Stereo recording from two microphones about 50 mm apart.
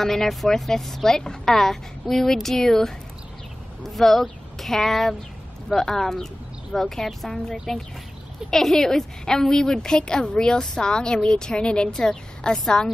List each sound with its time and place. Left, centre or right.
0.0 s a woman's voice: centre
7.1 s a woman's voice: centre